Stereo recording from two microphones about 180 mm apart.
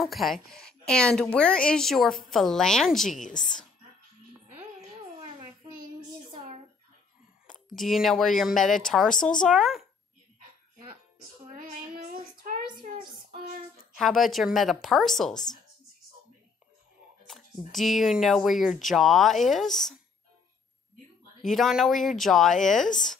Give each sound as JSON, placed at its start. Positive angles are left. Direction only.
{"t": 0.0, "sound": "a woman's voice", "side_deg": 0}
{"t": 3.2, "sound": "a woman's voice", "side_deg": 45}
{"t": 6.3, "sound": "a sound", "side_deg": -35}
{"t": 7.4, "sound": "a woman's voice", "side_deg": 0}
{"t": 11.5, "sound": "child singing", "side_deg": -50}
{"t": 13.9, "sound": "a woman's voice", "side_deg": 0}
{"t": 17.3, "sound": "a woman's voice", "side_deg": 0}
{"t": 21.4, "sound": "a woman's voice", "side_deg": 0}